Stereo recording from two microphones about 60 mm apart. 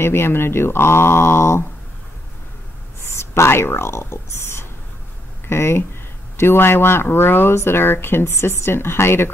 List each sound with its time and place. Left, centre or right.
0.0 s speech: left
3.1 s speech: left